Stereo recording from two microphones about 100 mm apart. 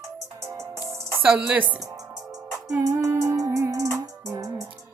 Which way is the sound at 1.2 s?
10° right (ahead or behind).